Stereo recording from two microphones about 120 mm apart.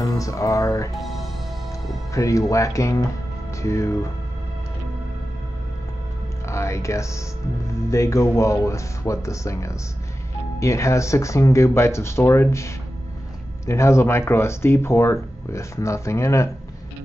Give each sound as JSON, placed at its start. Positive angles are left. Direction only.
{"t": 0.0, "sound": "music", "side_deg": 30}
{"t": 0.9, "sound": "music", "side_deg": 0}
{"t": 2.1, "sound": "speech", "side_deg": 25}
{"t": 6.4, "sound": "speech", "side_deg": 25}